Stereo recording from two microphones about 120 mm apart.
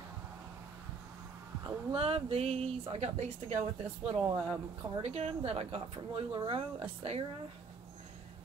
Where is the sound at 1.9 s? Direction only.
55° right (ahead or behind).